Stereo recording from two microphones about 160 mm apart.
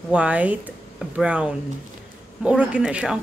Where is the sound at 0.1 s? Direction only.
10° right (ahead or behind).